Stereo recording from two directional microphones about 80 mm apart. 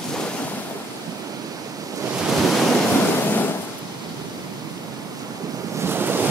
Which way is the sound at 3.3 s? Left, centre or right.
Left.